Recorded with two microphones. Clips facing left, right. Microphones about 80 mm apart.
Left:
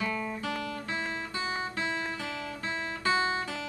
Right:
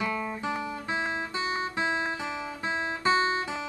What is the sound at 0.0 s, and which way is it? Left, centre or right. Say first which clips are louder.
Guitar: right 2 dB; centre.